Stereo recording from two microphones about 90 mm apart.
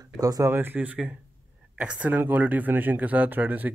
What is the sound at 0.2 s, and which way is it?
Speech, 40° right (ahead or behind).